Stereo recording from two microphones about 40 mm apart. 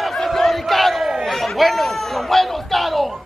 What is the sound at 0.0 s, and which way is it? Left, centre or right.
Crowd, centre.